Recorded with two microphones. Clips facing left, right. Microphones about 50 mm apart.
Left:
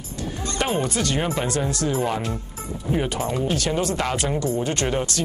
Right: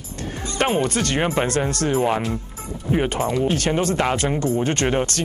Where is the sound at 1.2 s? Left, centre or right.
Right.